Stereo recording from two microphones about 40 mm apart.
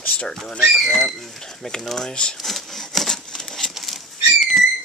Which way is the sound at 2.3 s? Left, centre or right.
Centre.